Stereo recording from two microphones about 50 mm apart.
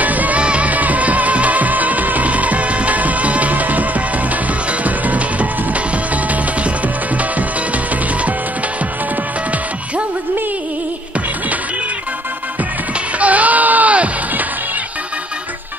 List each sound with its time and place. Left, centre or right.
0.0 s music: right
4.8 s music: right
13.2 s music: right